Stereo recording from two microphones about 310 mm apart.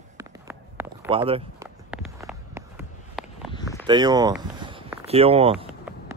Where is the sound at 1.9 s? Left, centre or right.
Centre.